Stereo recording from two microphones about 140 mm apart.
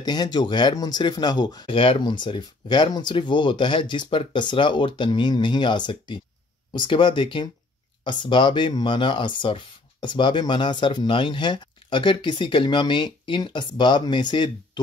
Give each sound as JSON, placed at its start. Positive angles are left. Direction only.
{"t": 0.0, "sound": "speech", "side_deg": 30}